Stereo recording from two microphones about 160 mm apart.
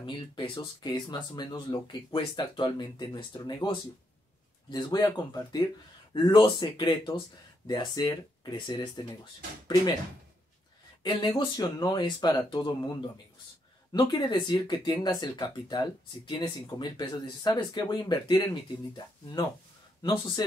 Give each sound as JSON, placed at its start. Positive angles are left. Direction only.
{"t": 0.0, "sound": "speech", "side_deg": 30}
{"t": 11.0, "sound": "speech", "side_deg": 25}
{"t": 14.1, "sound": "speech", "side_deg": 30}
{"t": 20.0, "sound": "speech", "side_deg": 30}